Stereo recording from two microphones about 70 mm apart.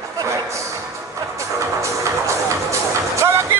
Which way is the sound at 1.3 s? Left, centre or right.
Right.